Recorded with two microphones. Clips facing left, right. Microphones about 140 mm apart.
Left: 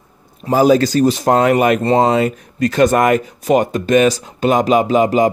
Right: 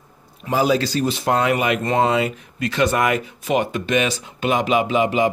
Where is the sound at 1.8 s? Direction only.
35° left (ahead or behind).